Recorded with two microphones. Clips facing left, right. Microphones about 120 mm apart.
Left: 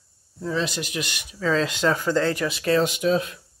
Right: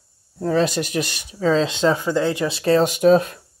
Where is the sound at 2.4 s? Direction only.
30° right (ahead or behind).